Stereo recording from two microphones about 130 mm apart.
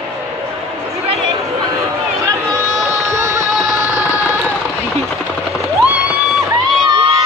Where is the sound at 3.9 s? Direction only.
10° right (ahead or behind).